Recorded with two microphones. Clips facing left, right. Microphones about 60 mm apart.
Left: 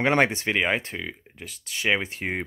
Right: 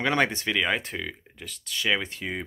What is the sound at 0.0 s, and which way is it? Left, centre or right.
Speech, left.